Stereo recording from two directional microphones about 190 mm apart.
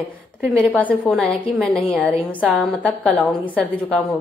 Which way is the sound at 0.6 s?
5° left (ahead or behind).